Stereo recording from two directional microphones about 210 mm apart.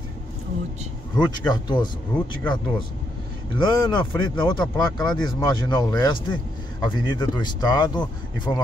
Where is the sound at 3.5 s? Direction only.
20° left (ahead or behind).